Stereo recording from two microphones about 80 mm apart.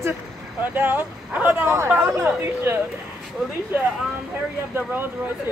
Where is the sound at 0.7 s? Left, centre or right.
Right.